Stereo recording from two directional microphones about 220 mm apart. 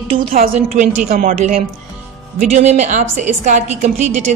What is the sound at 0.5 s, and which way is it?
A woman's voice, 30° right (ahead or behind).